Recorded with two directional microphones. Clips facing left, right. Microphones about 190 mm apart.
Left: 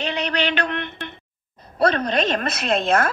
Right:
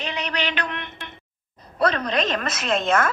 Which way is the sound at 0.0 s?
30° left (ahead or behind).